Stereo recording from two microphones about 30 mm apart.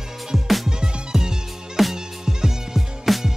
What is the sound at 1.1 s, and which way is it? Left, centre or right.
Music, right.